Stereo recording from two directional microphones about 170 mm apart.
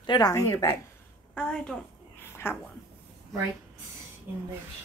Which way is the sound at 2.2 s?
15° left (ahead or behind).